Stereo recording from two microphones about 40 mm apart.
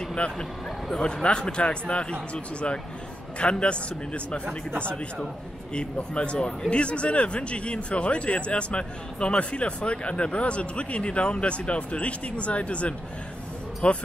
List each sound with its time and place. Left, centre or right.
0.1 s speech: left